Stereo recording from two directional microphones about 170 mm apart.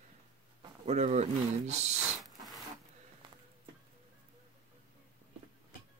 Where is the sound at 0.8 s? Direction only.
40° right (ahead or behind).